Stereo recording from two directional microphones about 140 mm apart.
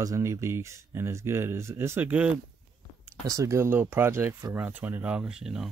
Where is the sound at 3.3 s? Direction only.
20° right (ahead or behind); by 5.7 s 5° right (ahead or behind).